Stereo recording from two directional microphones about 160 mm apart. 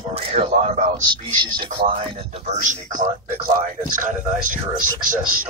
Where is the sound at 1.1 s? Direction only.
30° right (ahead or behind).